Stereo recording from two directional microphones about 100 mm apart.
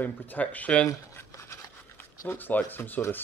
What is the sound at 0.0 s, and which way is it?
Speech, 15° left (ahead or behind).